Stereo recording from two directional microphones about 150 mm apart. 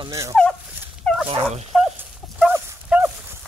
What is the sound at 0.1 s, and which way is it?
Turkey, 20° right (ahead or behind).